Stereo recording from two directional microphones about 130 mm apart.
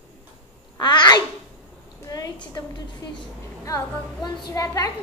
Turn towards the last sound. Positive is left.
turn(degrees=25)  # may be behind; listen again after turning